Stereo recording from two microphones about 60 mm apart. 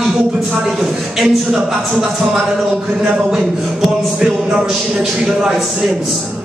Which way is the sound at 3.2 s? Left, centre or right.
Centre.